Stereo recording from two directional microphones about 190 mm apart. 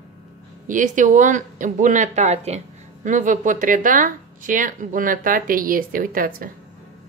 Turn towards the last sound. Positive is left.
turn(degrees=-50)  # may be behind; listen again after turning